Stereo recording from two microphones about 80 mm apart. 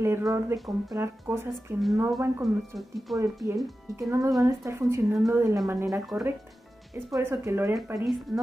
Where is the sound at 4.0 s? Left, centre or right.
Right.